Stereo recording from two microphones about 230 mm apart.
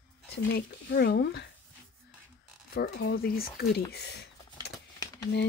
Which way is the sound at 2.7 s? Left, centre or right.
Left.